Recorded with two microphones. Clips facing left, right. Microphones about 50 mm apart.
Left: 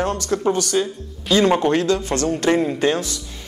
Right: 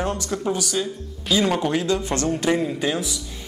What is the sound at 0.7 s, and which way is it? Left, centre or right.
A man's voice, centre.